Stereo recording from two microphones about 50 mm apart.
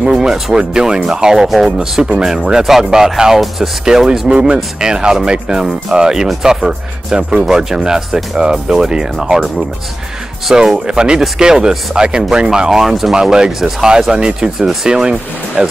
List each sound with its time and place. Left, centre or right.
0.0 s speech: centre
10.5 s speech: centre